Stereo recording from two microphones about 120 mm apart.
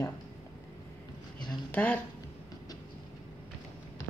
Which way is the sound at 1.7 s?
15° left (ahead or behind).